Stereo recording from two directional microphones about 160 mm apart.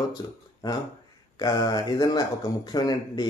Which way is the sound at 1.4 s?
25° left (ahead or behind).